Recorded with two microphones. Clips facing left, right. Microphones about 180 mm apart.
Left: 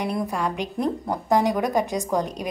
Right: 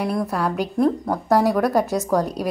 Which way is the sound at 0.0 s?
Centre (ahead or behind).